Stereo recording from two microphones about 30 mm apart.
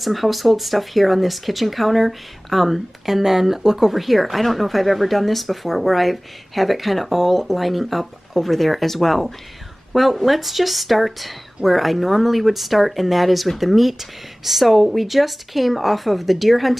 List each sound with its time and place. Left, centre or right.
0.0 s speech: centre